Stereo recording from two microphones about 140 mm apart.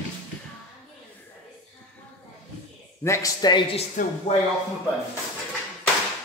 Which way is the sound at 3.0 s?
20° left (ahead or behind).